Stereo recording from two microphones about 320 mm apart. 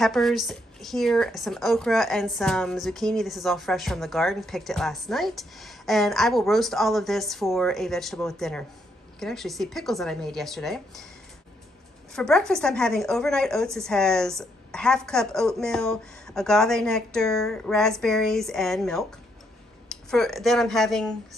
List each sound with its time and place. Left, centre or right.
0.0 s speech: centre
12.1 s speech: centre